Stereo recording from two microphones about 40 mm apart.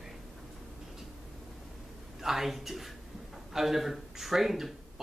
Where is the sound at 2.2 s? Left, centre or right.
Centre.